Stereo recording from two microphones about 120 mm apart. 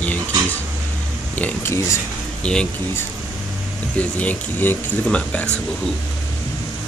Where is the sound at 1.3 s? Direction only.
15° left (ahead or behind).